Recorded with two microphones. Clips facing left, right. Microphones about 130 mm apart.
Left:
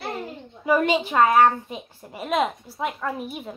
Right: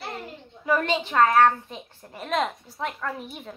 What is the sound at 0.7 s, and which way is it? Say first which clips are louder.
A woman's voice: left 4 dB; 15° left (ahead or behind).